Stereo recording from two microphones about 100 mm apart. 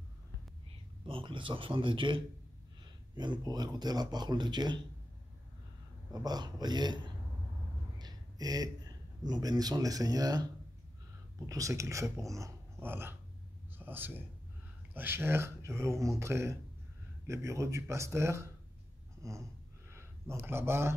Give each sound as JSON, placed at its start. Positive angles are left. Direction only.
{"t": 1.0, "sound": "a man's voice", "side_deg": -60}
{"t": 3.2, "sound": "speech", "side_deg": -45}
{"t": 6.1, "sound": "speech", "side_deg": -40}
{"t": 19.9, "sound": "a sound", "side_deg": -25}
{"t": 20.3, "sound": "speech", "side_deg": -25}